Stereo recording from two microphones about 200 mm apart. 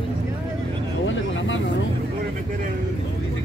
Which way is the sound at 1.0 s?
70° left (ahead or behind).